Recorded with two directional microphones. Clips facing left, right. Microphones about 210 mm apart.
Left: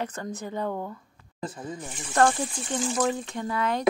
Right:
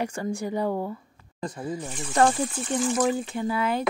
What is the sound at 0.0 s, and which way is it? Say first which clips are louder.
A woman's voice: right 4 dB; 10° right (ahead or behind).